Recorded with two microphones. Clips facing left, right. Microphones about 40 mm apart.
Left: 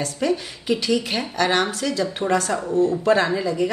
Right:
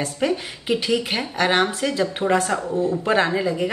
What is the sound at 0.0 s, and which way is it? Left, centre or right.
A woman's voice, right.